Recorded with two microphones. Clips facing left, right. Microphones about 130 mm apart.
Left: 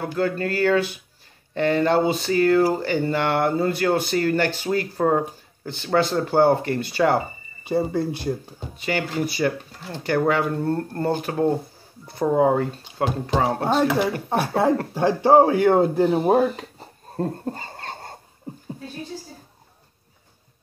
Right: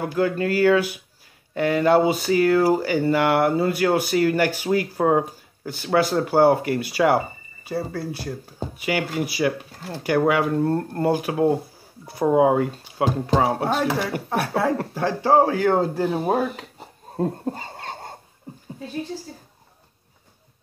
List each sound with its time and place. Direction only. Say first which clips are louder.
0.0 s speech: right 2 dB; 10° right (ahead or behind)
7.6 s speech: left 5 dB; 20° left (ahead or behind)
8.7 s speech: even; 10° right (ahead or behind)
13.7 s speech: left 3 dB; 25° left (ahead or behind)
17.2 s a sound: right 2 dB; 5° right (ahead or behind)